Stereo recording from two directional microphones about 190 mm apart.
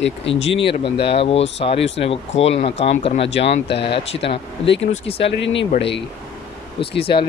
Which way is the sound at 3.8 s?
25° left (ahead or behind).